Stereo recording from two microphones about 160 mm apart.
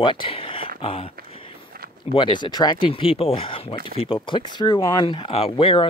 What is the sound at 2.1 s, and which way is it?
Speech, 30° left (ahead or behind).